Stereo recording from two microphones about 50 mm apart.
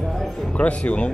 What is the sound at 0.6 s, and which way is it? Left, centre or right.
Speech, left.